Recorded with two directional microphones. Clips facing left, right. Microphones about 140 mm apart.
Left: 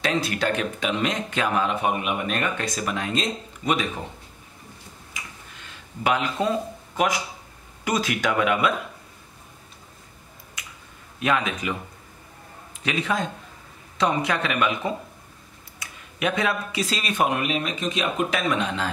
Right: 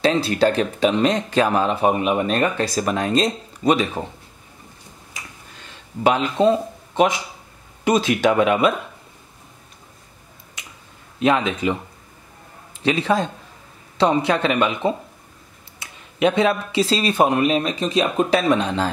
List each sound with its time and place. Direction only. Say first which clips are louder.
0.0 s speech: right 7 dB; 30° right (ahead or behind)
6.0 s speech: right 7 dB; 30° right (ahead or behind)
11.1 s speech: right 5 dB; 30° right (ahead or behind)
12.8 s speech: right 6 dB; 30° right (ahead or behind)